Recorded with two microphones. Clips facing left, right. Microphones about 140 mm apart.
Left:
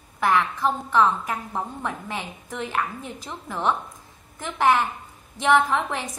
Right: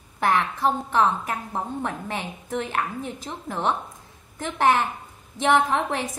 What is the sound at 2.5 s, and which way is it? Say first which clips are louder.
A woman's voice: right 1 dB; 50° right (ahead or behind).